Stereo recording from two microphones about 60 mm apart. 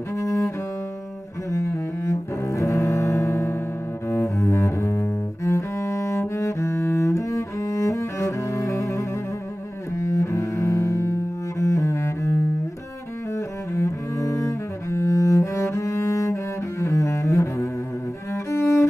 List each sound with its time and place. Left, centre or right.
0.1 s cello: left
1.5 s cello: left
9.9 s double bass: left
13.7 s cello: left
16.8 s double bass: left
18.3 s cello: left